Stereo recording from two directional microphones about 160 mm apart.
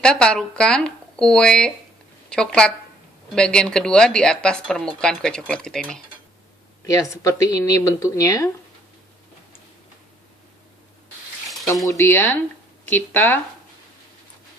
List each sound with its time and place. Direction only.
0.0 s speech: 5° left (ahead or behind)
6.9 s speech: 20° left (ahead or behind)
11.8 s speech: 20° left (ahead or behind)